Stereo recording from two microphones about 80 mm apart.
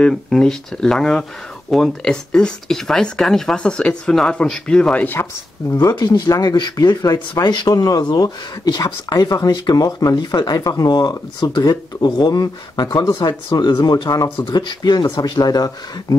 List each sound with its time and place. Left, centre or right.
0.0 s speech: centre
5.8 s speech: left
14.4 s speech: left